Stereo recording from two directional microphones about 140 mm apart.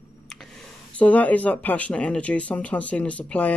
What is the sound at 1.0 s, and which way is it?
Speech, 10° left (ahead or behind).